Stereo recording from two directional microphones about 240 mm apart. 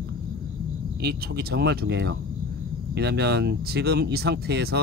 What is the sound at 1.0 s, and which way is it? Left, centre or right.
Speech, right.